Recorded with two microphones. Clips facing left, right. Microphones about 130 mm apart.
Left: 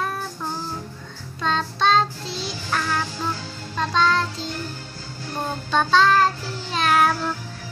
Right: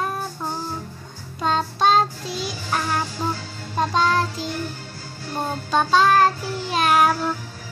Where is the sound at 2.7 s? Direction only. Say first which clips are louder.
Right 1 dB; 25° right (ahead or behind).